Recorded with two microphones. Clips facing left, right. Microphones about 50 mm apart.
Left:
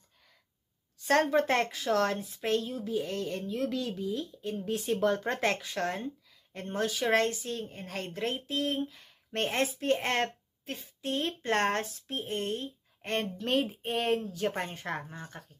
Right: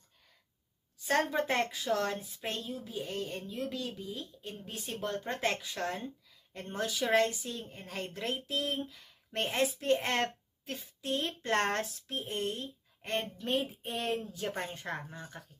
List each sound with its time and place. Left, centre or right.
1.3 s speech: left
2.9 s speech: left
5.6 s speech: left
9.3 s speech: left
13.8 s speech: left
14.4 s a woman's voice: left
15.1 s speech: left